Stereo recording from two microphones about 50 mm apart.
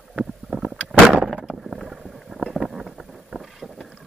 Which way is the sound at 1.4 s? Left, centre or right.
Centre.